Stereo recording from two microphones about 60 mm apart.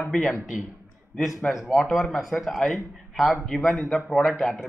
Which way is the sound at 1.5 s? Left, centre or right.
Centre.